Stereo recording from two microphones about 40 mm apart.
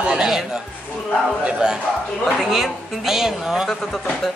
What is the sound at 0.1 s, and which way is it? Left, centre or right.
Speech, centre.